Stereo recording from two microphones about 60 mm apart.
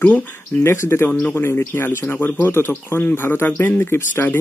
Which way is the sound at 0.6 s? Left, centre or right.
Left.